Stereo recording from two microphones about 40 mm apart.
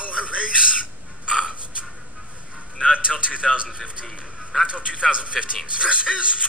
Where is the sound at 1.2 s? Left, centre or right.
Centre.